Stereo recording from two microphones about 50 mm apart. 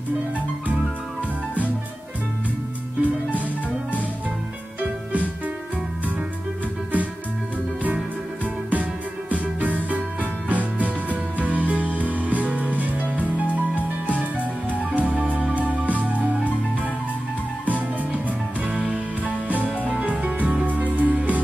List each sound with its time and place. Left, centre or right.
3.0 s music: right
9.3 s music: right
17.6 s music: right